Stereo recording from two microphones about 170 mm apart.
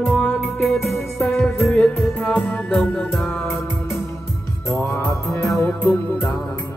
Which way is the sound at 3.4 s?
15° left (ahead or behind).